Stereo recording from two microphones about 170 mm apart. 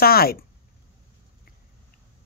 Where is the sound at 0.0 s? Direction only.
65° left (ahead or behind).